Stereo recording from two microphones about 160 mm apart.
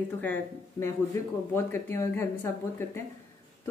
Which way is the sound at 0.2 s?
15° left (ahead or behind).